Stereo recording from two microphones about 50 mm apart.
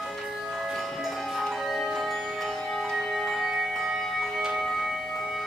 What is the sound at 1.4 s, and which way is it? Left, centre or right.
Music, centre.